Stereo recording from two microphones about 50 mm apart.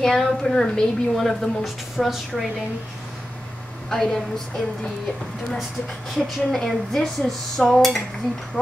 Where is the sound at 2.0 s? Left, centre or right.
Centre.